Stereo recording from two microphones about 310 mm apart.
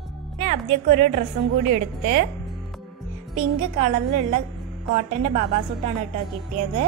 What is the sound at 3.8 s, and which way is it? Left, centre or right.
A woman's voice, right.